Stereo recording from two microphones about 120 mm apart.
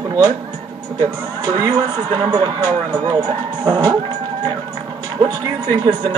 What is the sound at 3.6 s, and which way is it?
Speech, 40° right (ahead or behind).